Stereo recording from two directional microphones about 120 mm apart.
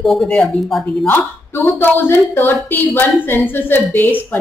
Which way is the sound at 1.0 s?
15° left (ahead or behind).